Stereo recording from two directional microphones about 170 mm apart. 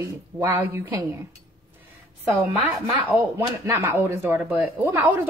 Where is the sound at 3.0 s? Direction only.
15° right (ahead or behind).